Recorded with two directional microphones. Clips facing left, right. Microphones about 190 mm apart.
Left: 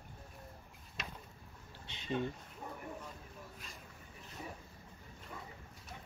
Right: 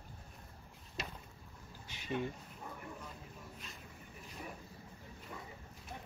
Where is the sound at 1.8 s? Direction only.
25° left (ahead or behind).